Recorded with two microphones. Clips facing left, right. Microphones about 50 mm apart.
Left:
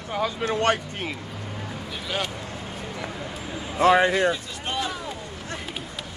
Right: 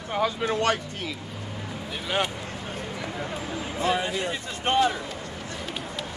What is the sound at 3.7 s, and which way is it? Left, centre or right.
Speech, left.